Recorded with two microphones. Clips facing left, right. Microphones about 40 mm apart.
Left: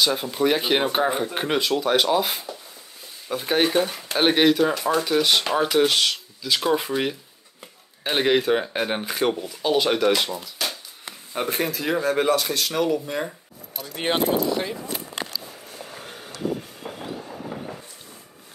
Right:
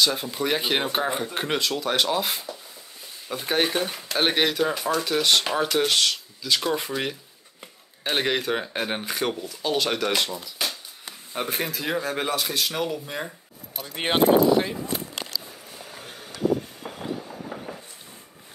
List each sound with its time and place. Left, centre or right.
0.0 s speech: centre
8.0 s speech: centre
13.7 s speech: right
15.1 s a sound: left
15.7 s vehicle: centre
16.8 s train: centre